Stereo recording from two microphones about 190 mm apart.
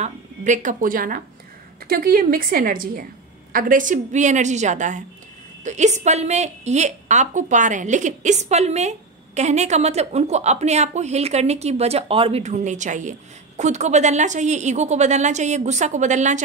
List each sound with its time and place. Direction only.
0.0 s a woman's voice: 40° right (ahead or behind)